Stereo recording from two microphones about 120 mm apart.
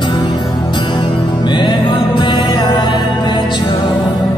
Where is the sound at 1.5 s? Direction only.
40° left (ahead or behind).